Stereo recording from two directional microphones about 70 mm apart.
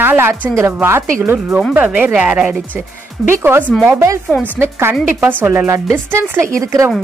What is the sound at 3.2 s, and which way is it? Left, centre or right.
A woman's voice, right.